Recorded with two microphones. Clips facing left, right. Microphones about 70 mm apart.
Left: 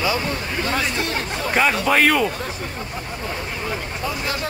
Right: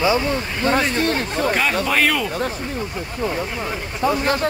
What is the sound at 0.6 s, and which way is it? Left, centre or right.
Speech, right.